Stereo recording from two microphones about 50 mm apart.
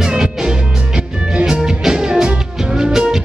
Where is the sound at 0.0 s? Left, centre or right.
Centre.